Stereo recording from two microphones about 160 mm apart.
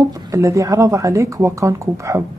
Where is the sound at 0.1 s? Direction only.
20° right (ahead or behind).